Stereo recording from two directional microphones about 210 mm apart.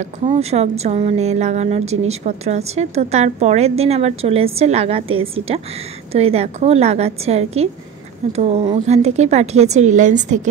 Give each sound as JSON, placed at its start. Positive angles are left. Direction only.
{"t": 0.0, "sound": "a woman's voice", "side_deg": -30}